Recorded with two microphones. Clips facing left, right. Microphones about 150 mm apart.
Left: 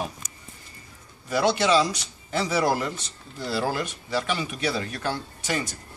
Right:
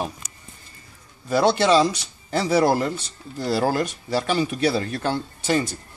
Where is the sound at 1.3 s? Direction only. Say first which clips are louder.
Right 4 dB; 30° right (ahead or behind).